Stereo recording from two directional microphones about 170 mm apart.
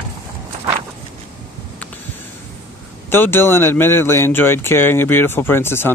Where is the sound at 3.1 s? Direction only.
15° left (ahead or behind).